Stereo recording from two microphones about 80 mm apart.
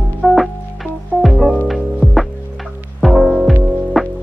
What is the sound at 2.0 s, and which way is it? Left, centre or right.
Music, left.